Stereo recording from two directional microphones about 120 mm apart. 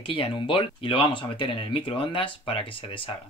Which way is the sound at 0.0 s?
45° left (ahead or behind).